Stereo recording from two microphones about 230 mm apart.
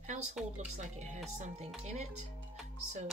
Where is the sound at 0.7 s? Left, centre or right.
Right.